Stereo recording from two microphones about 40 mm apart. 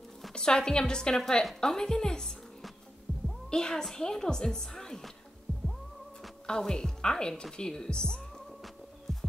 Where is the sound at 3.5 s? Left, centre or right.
Centre.